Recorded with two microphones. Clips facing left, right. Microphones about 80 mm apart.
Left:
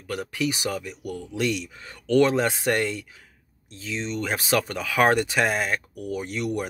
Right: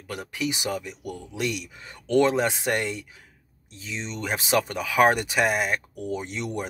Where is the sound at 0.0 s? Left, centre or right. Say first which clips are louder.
Left 3 dB; centre.